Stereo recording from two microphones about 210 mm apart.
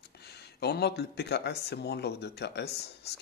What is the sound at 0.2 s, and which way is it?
Speech, 50° left (ahead or behind).